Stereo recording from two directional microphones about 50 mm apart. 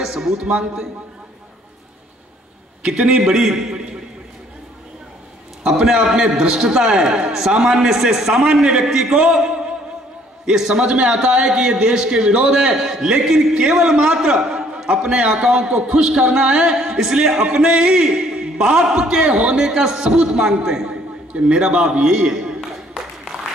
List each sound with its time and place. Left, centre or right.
0.0 s a man's voice: centre
2.8 s a man's voice: centre
5.6 s a man's voice: centre